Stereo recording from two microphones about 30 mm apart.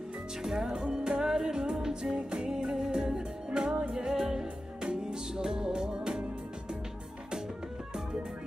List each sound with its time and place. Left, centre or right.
0.4 s music: centre